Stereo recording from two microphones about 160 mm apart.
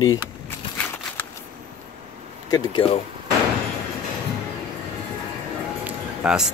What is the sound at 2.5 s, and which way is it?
Speech, 30° left (ahead or behind).